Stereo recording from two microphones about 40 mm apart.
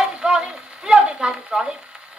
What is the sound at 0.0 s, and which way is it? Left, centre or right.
Stir, centre.